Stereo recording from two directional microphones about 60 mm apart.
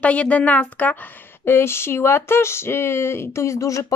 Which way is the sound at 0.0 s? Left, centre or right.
Left.